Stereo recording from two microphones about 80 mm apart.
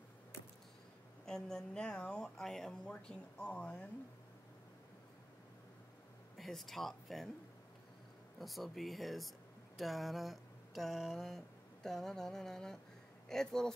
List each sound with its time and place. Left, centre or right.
1.2 s speech: centre
6.3 s speech: centre
8.4 s speech: centre
9.8 s a sound: centre
13.3 s speech: centre